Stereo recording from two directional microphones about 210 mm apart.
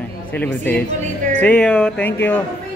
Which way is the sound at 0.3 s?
10° left (ahead or behind).